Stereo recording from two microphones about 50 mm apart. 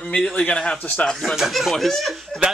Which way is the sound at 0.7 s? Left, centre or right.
Left.